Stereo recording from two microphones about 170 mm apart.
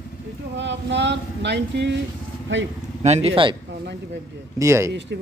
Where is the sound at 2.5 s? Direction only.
90° right.